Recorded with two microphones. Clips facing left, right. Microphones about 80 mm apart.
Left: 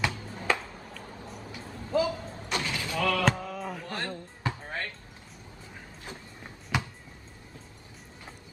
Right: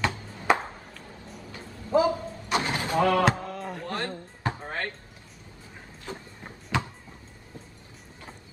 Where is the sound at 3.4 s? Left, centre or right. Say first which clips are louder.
Right 1 dB; centre.